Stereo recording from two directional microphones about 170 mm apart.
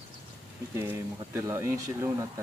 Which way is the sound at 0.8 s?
15° right (ahead or behind).